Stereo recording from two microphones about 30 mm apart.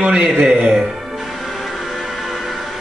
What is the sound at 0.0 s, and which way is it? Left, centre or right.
Speech, right.